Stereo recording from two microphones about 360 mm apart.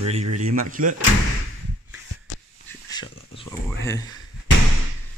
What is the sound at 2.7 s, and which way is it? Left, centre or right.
Dog, centre.